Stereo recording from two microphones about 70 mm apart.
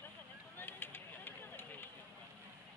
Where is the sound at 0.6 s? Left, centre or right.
Left.